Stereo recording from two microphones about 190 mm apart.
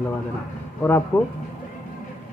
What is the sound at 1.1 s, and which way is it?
Speech, 10° left (ahead or behind).